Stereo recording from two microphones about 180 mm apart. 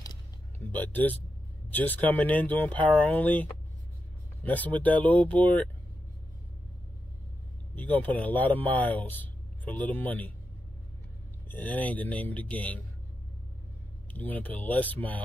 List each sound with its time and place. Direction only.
0.7 s speech: 10° left (ahead or behind)
4.5 s speech: 10° left (ahead or behind)
7.7 s speech: 10° left (ahead or behind)
11.4 s speech: 10° left (ahead or behind)
14.1 s speech: 10° left (ahead or behind)